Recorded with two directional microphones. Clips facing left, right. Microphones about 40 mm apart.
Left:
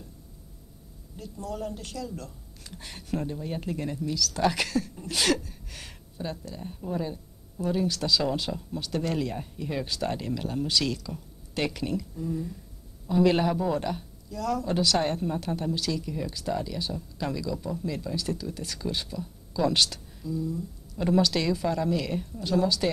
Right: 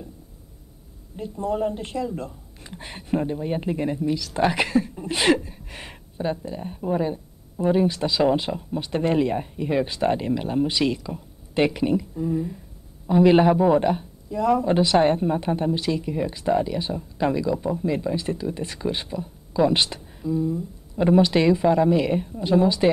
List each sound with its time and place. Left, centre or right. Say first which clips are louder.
1.1 s a woman's voice: right 10 dB; right